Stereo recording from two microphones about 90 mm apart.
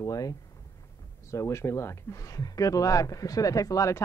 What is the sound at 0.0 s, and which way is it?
Speech, 40° left (ahead or behind).